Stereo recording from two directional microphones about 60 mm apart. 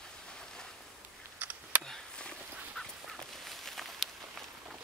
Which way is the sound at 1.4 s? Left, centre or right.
Right.